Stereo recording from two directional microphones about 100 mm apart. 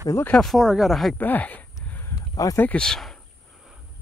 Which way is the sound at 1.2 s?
15° left (ahead or behind).